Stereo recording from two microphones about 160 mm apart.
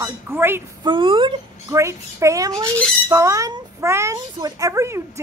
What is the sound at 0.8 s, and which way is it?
Speech, 30° right (ahead or behind).